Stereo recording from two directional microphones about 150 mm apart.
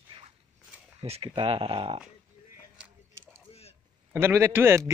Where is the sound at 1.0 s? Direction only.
40° right (ahead or behind).